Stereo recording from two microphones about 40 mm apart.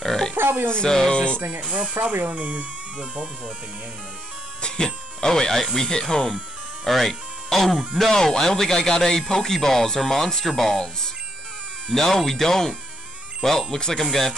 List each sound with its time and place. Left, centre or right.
0.0 s burping: centre
0.4 s a sound: right
0.7 s speech: centre
1.1 s speech: left
1.6 s speech: right
4.6 s speech: left
6.8 s speech: centre